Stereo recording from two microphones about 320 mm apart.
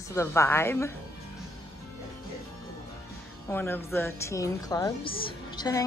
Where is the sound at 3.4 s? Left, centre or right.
Centre.